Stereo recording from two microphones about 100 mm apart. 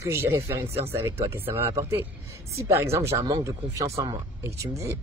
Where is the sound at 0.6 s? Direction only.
90° right.